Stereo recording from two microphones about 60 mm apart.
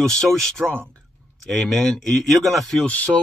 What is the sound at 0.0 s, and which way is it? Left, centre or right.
Speech, centre.